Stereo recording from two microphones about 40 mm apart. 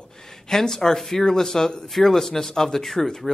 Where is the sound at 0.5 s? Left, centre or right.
Centre.